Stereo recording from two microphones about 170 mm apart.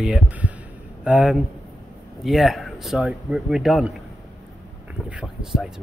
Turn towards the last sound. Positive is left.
turn(degrees=-5)  # may be behind; listen again after turning